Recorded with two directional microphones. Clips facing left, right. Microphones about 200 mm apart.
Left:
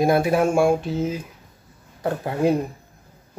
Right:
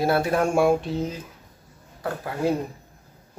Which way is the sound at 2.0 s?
20° left (ahead or behind).